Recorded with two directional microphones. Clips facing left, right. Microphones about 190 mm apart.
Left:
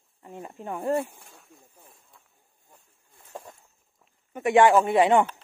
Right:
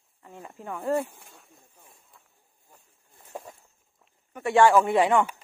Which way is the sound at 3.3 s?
5° right (ahead or behind).